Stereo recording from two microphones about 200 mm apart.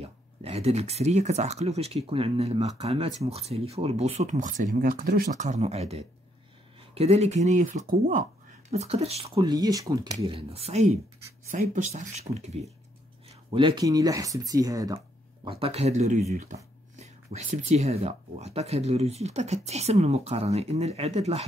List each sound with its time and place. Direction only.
0.0 s speech: 30° right (ahead or behind)
10.2 s speech: 30° right (ahead or behind)
13.6 s speech: 20° right (ahead or behind)
15.0 s speech: 30° right (ahead or behind)